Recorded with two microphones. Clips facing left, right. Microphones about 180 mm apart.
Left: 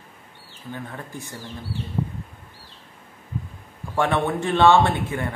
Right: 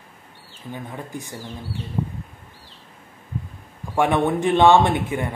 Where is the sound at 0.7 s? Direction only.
15° right (ahead or behind).